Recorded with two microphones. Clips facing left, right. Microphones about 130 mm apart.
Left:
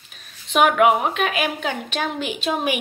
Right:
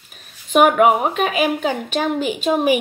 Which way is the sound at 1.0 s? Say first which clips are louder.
Right 4 dB; 5° right (ahead or behind).